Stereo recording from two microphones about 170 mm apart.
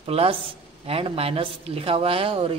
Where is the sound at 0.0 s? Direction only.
35° right (ahead or behind).